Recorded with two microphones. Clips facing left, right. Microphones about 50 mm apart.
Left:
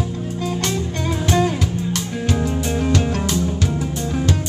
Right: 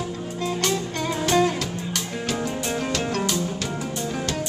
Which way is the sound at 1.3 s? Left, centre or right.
Centre.